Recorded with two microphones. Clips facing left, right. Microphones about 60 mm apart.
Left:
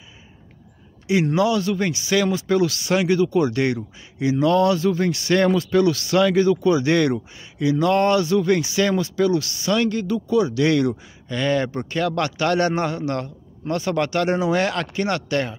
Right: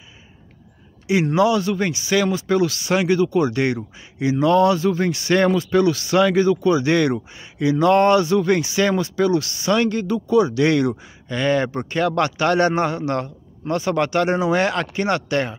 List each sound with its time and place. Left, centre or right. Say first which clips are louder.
1.0 s speech: right 2 dB; centre
6.6 s speech: right 1 dB; centre
7.5 s speech: right 3 dB; right
13.7 s speech: right 2 dB; centre